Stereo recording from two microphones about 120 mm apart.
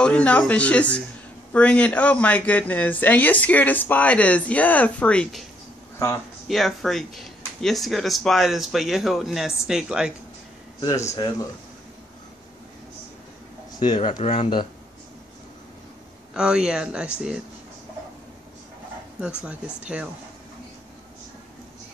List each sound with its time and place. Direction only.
0.0 s speech: 10° left (ahead or behind)
6.4 s speech: centre (ahead or behind)
11.1 s speech: 35° left (ahead or behind)
13.7 s speech: 40° left (ahead or behind)
14.2 s speech: 65° left (ahead or behind)
16.3 s speech: 5° right (ahead or behind)
19.2 s speech: 10° right (ahead or behind)